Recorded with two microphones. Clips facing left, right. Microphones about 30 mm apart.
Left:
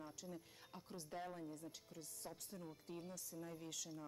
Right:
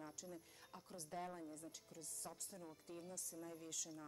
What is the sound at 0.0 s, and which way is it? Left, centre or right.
Speech, centre.